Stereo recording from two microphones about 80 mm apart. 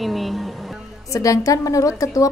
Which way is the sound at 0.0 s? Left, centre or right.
Centre.